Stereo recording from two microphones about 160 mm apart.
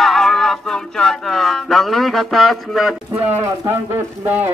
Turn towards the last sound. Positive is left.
turn(degrees=-10)  # may be behind; listen again after turning